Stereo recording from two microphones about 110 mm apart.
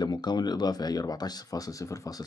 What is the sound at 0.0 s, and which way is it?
Speech, 40° left (ahead or behind).